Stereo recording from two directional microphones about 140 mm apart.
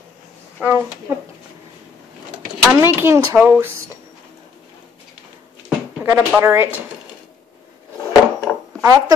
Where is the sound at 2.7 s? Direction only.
20° right (ahead or behind).